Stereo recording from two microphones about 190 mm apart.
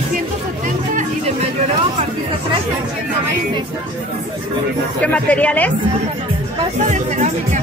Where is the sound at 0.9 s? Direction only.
40° right (ahead or behind).